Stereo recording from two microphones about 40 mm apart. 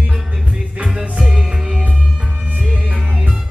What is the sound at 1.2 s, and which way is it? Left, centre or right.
Music, centre.